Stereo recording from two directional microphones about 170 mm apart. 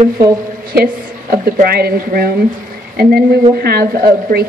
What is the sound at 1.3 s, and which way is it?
A woman's voice, 60° right (ahead or behind).